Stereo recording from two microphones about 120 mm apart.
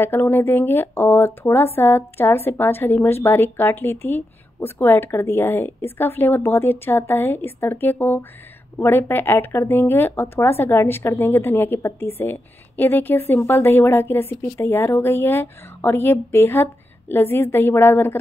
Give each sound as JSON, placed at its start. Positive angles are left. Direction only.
{"t": 0.0, "sound": "speech", "side_deg": 15}